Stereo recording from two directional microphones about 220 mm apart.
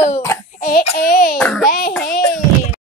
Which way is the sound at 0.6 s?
45° left (ahead or behind).